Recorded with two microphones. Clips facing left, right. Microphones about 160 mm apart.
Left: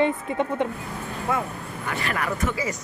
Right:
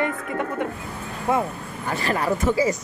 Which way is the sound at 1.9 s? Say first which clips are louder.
Right 5 dB; 35° right (ahead or behind).